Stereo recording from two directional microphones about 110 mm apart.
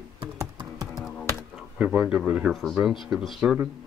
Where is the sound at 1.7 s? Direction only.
10° right (ahead or behind).